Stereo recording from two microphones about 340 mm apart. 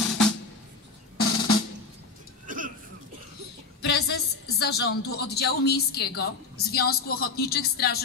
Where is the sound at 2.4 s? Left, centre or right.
Right.